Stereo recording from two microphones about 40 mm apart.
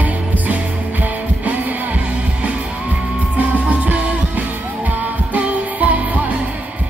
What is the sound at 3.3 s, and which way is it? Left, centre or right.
Music, right.